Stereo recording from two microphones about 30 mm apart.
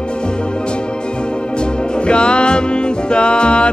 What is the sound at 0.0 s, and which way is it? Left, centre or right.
Music, left.